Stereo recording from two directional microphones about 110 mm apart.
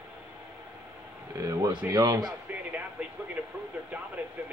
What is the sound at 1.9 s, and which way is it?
Speech, 30° right (ahead or behind).